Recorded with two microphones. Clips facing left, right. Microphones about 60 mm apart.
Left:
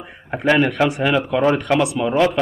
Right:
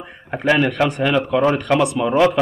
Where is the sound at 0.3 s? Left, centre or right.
Centre.